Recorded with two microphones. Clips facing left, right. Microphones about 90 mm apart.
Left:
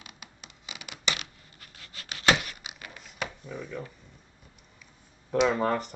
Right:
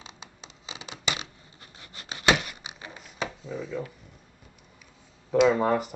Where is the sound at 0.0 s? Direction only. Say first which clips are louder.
Right 3 dB; 25° right (ahead or behind).